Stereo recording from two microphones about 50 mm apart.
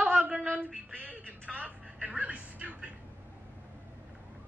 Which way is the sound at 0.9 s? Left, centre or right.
Right.